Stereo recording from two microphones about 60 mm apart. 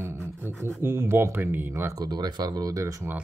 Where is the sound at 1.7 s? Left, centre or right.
Right.